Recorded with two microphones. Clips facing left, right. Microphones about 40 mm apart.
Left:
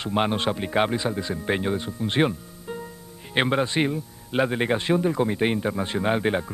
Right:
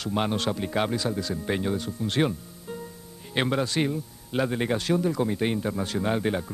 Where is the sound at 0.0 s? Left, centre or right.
Left.